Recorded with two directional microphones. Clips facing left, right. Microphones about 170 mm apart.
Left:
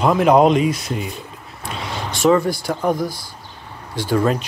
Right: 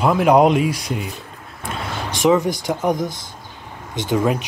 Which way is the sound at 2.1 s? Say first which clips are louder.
Left 1 dB; 15° right (ahead or behind).